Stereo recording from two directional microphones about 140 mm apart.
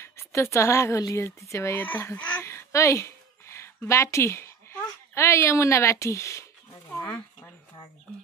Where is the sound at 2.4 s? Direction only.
20° left (ahead or behind).